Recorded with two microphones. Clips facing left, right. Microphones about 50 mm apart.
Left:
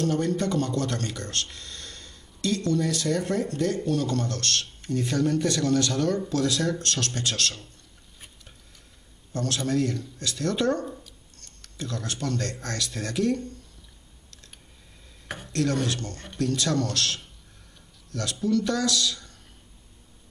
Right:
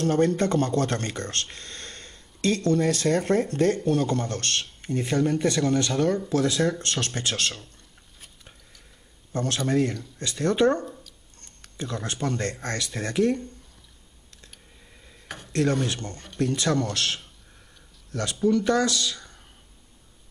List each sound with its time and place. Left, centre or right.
0.0 s speech: right
9.3 s a man's voice: right
15.2 s chopping: centre
15.9 s speech: right